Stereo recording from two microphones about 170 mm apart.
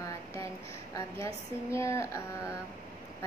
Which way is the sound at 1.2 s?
15° left (ahead or behind).